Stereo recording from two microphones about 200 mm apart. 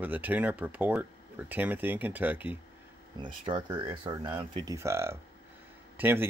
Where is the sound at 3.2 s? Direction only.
25° right (ahead or behind).